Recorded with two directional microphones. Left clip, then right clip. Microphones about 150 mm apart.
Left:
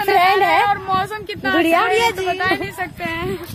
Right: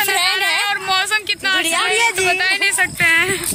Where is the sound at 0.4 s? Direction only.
40° left (ahead or behind).